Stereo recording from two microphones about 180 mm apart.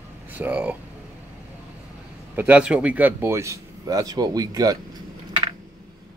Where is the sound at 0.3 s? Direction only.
10° right (ahead or behind).